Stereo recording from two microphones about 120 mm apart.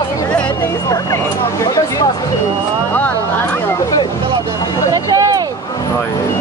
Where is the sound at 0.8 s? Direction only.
30° left (ahead or behind).